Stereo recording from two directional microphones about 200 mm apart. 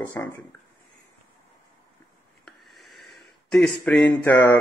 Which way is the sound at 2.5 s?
Centre (ahead or behind).